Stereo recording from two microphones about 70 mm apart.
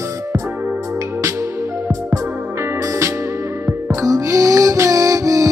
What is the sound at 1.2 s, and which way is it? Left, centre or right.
Music, right.